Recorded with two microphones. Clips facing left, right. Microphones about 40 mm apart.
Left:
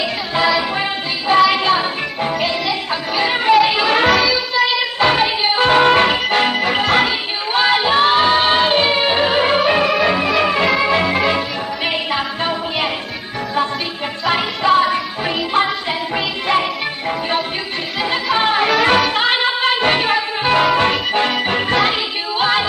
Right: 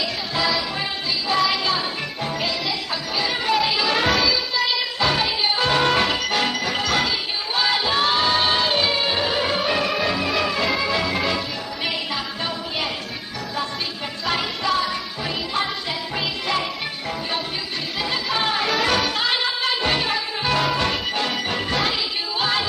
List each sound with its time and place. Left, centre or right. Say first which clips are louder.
0.3 s music: left 7 dB; left
4.1 s a sound: left 5 dB; centre
4.9 s music: left 7 dB; left
14.2 s music: left 7 dB; left
18.1 s music: left 7 dB; left